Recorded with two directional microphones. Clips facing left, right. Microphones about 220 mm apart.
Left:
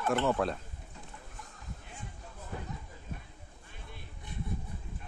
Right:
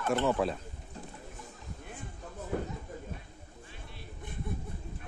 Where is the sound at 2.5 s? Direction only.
50° right (ahead or behind).